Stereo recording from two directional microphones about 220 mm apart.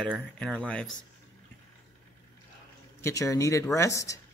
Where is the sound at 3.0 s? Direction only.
15° left (ahead or behind).